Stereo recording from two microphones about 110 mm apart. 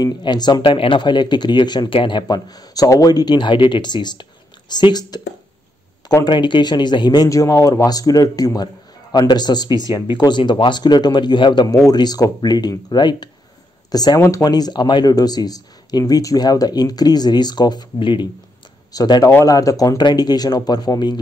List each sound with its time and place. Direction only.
0.0 s speech: 40° left (ahead or behind)
6.2 s speech: 45° left (ahead or behind)
17.9 s speech: 50° left (ahead or behind)
19.2 s speech: 30° left (ahead or behind)